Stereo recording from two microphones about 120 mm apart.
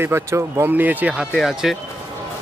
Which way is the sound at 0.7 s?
15° right (ahead or behind).